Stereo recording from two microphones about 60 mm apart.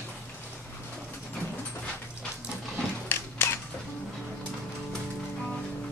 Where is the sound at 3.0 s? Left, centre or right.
Left.